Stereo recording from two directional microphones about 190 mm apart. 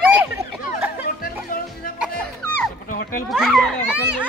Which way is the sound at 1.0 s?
50° left (ahead or behind).